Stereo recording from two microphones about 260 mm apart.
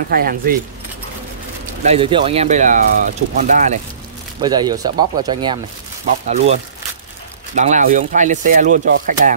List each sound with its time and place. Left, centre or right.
0.1 s speech: right
1.9 s speech: centre
4.4 s speech: centre